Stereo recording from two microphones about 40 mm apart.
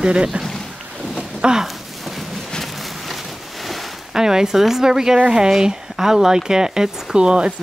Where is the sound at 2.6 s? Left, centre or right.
Centre.